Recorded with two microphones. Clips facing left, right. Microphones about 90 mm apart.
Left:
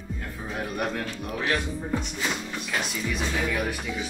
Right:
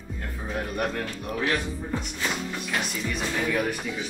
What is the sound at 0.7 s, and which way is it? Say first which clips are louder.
Speech: right 1 dB; centre (ahead or behind).